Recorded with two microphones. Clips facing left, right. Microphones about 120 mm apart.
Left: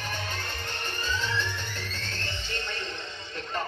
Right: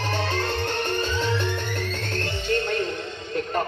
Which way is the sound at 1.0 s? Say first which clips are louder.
Right 6 dB; 60° right (ahead or behind).